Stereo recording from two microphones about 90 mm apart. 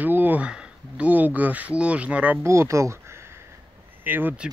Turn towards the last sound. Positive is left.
turn(degrees=-20)  # may be behind; listen again after turning